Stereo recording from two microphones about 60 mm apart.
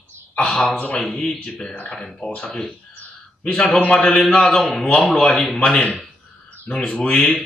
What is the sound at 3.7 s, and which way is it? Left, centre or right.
Speech, left.